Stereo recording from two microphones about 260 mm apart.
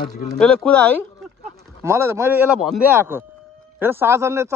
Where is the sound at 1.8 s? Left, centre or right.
Centre.